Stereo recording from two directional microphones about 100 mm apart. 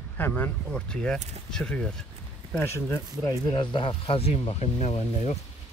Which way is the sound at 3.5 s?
60° left (ahead or behind).